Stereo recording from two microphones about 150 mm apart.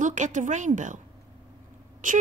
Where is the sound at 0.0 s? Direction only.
55° right (ahead or behind).